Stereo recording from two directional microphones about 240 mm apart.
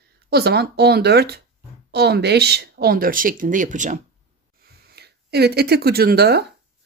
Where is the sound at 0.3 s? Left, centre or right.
Right.